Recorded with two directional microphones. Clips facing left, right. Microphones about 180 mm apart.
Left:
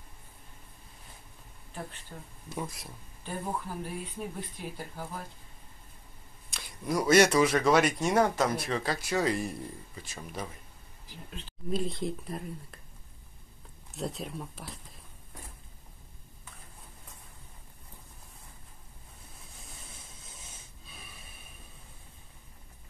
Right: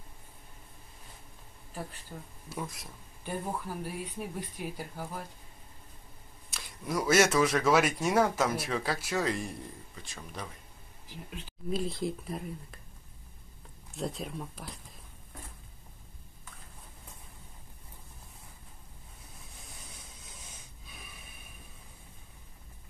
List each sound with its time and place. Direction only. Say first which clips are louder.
1.7 s speech: right 1 dB; 5° right (ahead or behind)
3.8 s speech: even; 10° right (ahead or behind)
6.5 s speech: left 2 dB; centre (ahead or behind)
11.1 s speech: right 1 dB; 10° right (ahead or behind)
13.9 s speech: even; centre (ahead or behind)